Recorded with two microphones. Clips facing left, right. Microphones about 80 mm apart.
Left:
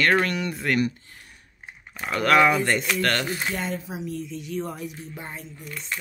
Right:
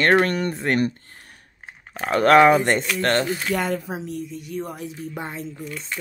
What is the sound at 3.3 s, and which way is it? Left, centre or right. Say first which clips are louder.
Speech: right 4 dB; left.